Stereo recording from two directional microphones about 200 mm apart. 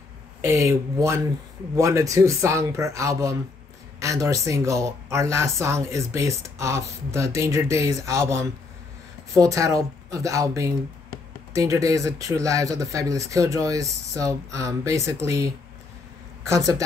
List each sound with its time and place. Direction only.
0.4 s speech: 15° right (ahead or behind)